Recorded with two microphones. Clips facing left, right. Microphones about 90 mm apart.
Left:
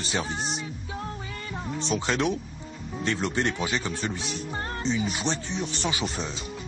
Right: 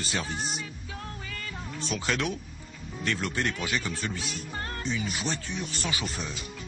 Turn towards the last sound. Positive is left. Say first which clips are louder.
# left 4 dB
turn(degrees=0)  # may be behind; listen again after turning